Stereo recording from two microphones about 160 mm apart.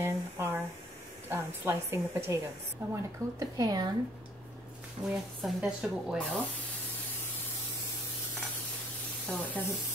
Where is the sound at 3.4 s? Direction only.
25° right (ahead or behind).